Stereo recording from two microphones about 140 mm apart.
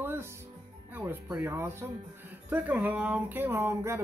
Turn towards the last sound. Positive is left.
turn(degrees=-20)  # may be behind; listen again after turning